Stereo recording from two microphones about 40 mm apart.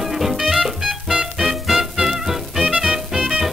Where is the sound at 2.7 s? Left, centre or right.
Right.